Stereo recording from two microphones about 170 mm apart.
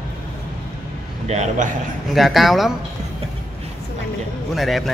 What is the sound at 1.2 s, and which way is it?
Speech, 40° right (ahead or behind).